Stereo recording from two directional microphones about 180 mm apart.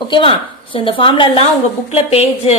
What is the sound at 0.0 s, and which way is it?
A woman's voice, 25° left (ahead or behind).